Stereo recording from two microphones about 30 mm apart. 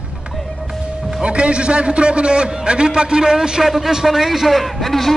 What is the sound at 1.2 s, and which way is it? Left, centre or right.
A man's voice, right.